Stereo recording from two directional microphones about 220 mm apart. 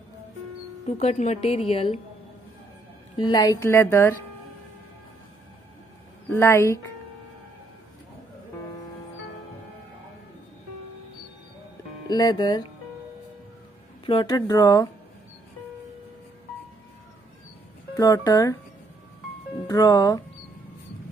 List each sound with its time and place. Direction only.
0.8 s a woman's voice: 30° left (ahead or behind)
3.3 s speech: 15° left (ahead or behind)
6.3 s speech: 10° left (ahead or behind)
12.1 s a woman's voice: 20° left (ahead or behind)
14.0 s speech: 20° left (ahead or behind)
17.9 s speech: 15° left (ahead or behind)
19.7 s speech: 15° left (ahead or behind)